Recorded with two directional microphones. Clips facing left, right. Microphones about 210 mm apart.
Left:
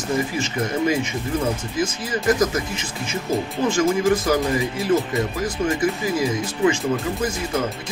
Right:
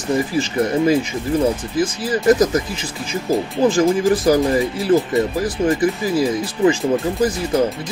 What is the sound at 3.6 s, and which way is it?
Speech, 35° right (ahead or behind).